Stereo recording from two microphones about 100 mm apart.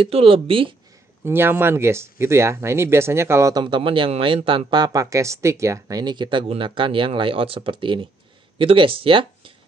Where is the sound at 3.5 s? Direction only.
55° right (ahead or behind).